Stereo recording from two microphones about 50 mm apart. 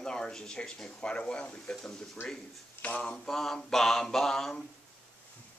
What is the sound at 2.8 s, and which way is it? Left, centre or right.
Mantra, left.